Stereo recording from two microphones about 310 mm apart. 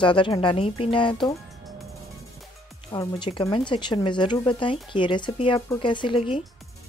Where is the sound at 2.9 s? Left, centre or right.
Centre.